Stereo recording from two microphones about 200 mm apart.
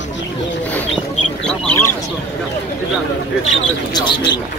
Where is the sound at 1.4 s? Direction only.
5° left (ahead or behind).